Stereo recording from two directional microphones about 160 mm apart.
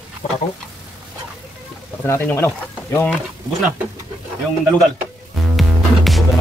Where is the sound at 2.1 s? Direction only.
15° left (ahead or behind).